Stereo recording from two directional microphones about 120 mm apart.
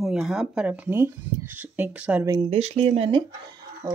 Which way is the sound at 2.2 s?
35° right (ahead or behind).